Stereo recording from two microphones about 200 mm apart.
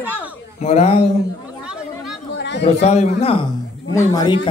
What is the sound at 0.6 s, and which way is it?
Speech, 30° left (ahead or behind).